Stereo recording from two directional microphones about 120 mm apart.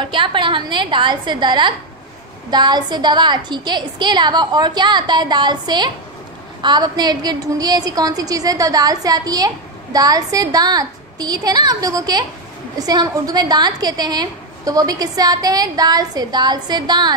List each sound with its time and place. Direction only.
0.0 s a woman's voice: 45° right (ahead or behind)